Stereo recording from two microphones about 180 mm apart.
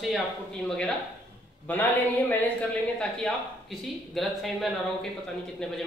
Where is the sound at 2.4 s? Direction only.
5° left (ahead or behind).